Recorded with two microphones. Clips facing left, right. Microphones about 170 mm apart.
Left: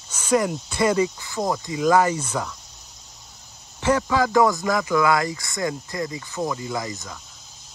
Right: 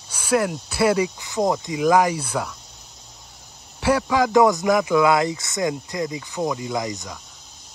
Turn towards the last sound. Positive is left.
turn(degrees=-15)  # may be behind; listen again after turning